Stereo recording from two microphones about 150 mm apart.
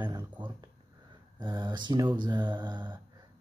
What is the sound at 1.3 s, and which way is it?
Speech, 30° right (ahead or behind).